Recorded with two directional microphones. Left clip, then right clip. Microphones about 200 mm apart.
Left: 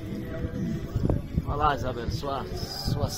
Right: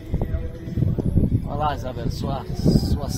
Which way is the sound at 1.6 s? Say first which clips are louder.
Even; 55° right (ahead or behind).